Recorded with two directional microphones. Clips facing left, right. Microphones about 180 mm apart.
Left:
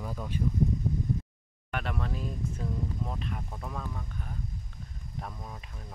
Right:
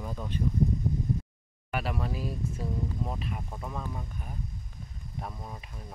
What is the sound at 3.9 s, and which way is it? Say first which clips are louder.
Speech: right 1 dB; 15° right (ahead or behind).